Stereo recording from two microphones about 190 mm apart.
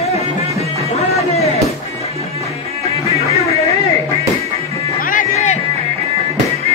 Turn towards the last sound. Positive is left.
turn(degrees=35)  # may be behind; listen again after turning